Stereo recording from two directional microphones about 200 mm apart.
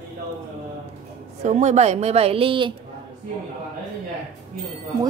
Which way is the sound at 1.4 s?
35° right (ahead or behind).